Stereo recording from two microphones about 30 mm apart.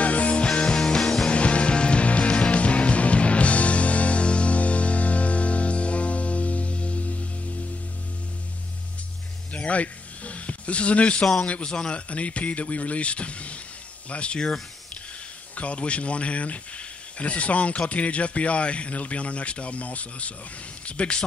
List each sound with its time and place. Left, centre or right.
0.0 s music: left
0.5 s music: left
1.3 s music: left
9.5 s a sound: left
11.6 s a man's voice: left
12.1 s speech: left
15.5 s speech: left